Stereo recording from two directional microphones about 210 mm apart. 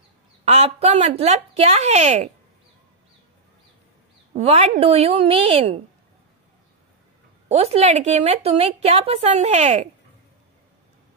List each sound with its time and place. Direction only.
0.5 s speech: 30° right (ahead or behind)
4.3 s speech: 30° right (ahead or behind)
7.4 s speech: 30° right (ahead or behind)